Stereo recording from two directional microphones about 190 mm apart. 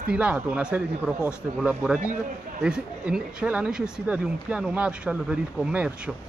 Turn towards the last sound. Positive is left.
turn(degrees=-5)  # may be behind; listen again after turning